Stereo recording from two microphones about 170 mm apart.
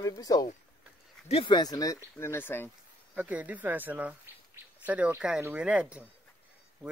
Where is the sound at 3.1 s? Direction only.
10° right (ahead or behind).